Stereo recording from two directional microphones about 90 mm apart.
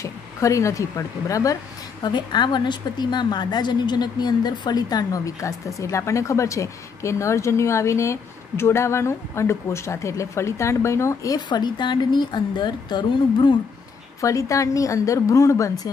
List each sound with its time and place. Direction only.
0.0 s speech: 35° left (ahead or behind)
2.0 s a woman's voice: 55° left (ahead or behind); by 11.3 s 35° left (ahead or behind)
11.3 s a woman's voice: 55° left (ahead or behind)
14.2 s speech: 35° left (ahead or behind)